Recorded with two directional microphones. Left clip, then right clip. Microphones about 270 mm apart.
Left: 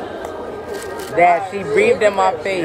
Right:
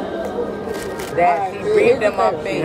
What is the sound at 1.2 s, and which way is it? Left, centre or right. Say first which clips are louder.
Speech: left 3 dB; left.